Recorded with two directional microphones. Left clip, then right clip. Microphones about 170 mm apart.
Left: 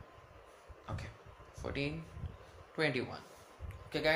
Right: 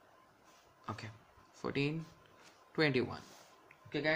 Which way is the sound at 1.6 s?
40° right (ahead or behind).